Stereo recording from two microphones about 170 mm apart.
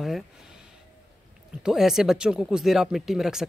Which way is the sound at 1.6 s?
5° right (ahead or behind).